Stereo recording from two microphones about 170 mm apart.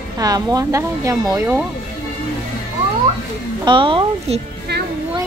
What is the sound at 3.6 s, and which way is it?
Speech, 30° right (ahead or behind).